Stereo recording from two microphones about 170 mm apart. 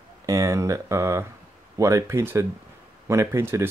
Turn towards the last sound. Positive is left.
turn(degrees=-15)  # may be behind; listen again after turning